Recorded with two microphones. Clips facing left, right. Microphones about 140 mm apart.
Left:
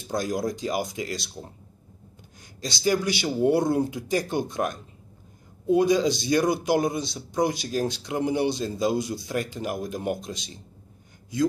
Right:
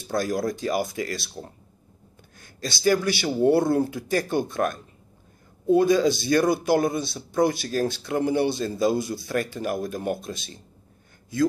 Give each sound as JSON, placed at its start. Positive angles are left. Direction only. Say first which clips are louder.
{"t": 0.1, "sound": "speech", "louder": "right 2 dB", "side_deg": 20}
{"t": 2.8, "sound": "speech", "louder": "right 2 dB", "side_deg": 15}